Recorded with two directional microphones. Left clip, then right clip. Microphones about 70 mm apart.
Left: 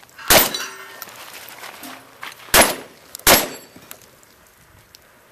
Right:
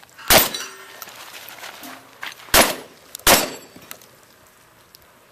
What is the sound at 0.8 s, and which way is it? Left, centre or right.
Music, centre.